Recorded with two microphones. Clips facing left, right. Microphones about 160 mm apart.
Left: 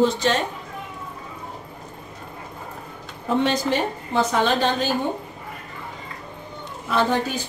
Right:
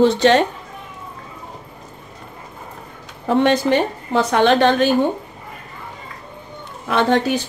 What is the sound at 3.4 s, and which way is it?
Speech, 60° right (ahead or behind).